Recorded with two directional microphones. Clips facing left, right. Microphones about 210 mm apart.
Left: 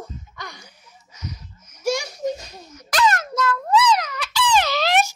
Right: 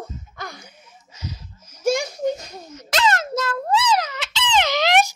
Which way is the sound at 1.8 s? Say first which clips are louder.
Right 3 dB; 55° right (ahead or behind).